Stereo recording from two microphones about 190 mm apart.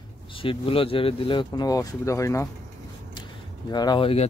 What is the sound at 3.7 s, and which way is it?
Speech, 20° left (ahead or behind).